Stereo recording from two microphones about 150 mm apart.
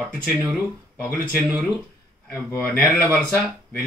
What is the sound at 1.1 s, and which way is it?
Speech, 10° left (ahead or behind).